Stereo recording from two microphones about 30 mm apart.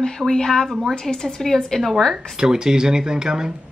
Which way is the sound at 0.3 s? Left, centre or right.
Centre.